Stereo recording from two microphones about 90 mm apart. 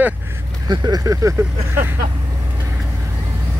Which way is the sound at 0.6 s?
50° right (ahead or behind).